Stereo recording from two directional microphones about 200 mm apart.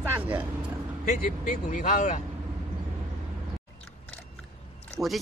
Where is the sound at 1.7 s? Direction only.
40° left (ahead or behind).